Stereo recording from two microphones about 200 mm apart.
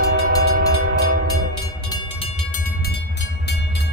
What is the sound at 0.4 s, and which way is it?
Train, 50° right (ahead or behind).